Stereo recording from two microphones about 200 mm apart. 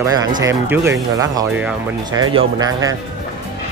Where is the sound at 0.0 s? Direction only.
20° right (ahead or behind).